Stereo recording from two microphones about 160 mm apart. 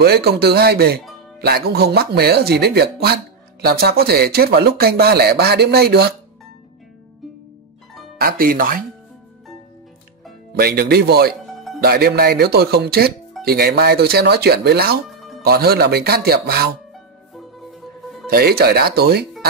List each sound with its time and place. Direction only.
0.0 s speech: 80° right
8.2 s speech: 65° right (ahead or behind)
10.5 s speech: 70° right (ahead or behind)
15.0 s music: centre (ahead or behind)
15.4 s speech: 75° right (ahead or behind)
18.3 s speech: 70° right (ahead or behind)